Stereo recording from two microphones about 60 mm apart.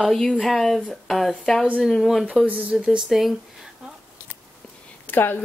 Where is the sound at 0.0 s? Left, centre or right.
Centre.